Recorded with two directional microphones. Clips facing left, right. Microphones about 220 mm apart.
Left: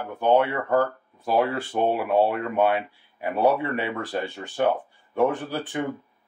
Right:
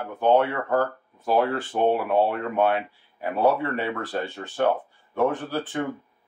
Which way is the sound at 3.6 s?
15° left (ahead or behind).